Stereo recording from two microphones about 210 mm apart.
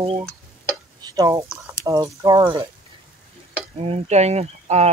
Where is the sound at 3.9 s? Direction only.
30° right (ahead or behind).